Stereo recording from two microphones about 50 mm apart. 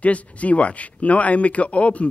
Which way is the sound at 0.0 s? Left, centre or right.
Left.